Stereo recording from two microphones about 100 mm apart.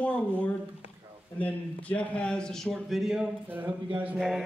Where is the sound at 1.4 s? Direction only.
15° left (ahead or behind); by 3.3 s 5° right (ahead or behind).